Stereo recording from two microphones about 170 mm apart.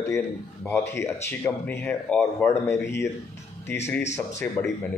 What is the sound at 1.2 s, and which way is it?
A man's voice, 15° left (ahead or behind).